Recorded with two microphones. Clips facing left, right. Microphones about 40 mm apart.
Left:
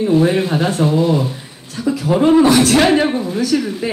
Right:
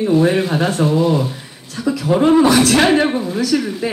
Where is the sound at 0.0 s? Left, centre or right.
Centre.